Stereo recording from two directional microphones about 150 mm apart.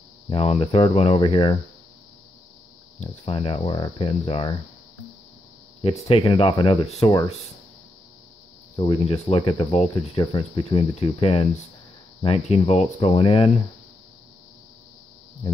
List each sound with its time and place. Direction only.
0.3 s speech: 40° left (ahead or behind)
3.0 s speech: 40° left (ahead or behind)
5.8 s speech: 35° left (ahead or behind)
8.7 s speech: 35° left (ahead or behind)